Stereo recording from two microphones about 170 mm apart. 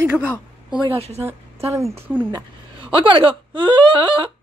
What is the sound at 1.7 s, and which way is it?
Speech, 15° right (ahead or behind).